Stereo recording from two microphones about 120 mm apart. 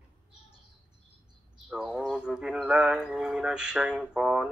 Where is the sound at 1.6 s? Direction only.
5° right (ahead or behind).